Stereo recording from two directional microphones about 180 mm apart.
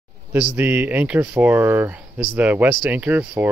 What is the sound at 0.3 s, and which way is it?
Speech, 10° right (ahead or behind).